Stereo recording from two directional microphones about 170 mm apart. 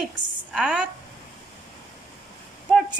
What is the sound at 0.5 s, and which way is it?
Speech, 5° right (ahead or behind).